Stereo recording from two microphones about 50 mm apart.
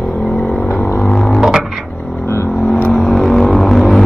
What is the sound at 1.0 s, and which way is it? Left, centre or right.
Music, centre.